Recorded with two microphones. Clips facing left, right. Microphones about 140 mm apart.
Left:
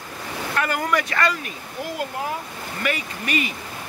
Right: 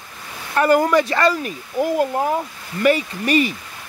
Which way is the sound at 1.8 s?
40° right (ahead or behind).